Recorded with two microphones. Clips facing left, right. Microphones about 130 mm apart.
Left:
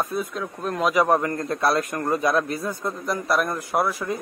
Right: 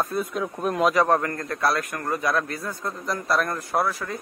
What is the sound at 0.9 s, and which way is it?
A man's voice, 10° left (ahead or behind).